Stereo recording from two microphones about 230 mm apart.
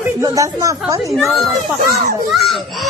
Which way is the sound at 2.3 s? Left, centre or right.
Centre.